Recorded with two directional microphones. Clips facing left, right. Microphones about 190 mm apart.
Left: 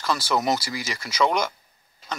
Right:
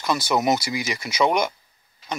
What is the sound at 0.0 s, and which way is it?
Speech, 20° right (ahead or behind).